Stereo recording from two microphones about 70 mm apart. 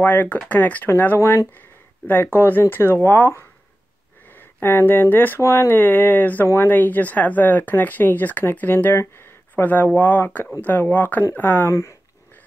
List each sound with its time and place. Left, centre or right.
0.0 s speech: left
0.8 s speech: left
6.4 s speech: left
6.7 s speech: left